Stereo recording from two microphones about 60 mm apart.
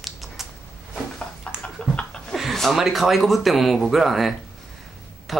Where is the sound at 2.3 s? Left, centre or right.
Centre.